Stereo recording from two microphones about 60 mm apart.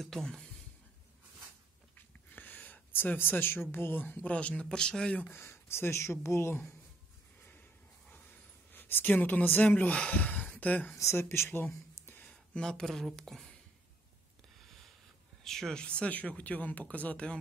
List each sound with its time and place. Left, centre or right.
0.0 s speech: centre
2.0 s a sound: left
3.7 s speech: left; by 5.2 s centre
5.2 s speech: left
8.7 s speech: left
11.0 s speech: left
12.3 s speech: centre
15.4 s speech: centre
15.8 s speech: centre